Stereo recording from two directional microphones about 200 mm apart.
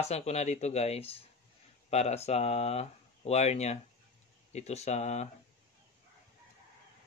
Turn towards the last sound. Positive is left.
turn(degrees=35)  # may be behind; listen again after turning